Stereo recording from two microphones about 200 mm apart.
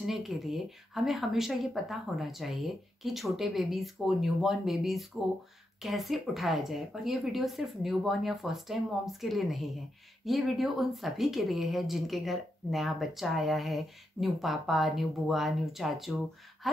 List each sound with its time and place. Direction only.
0.0 s speech: centre (ahead or behind)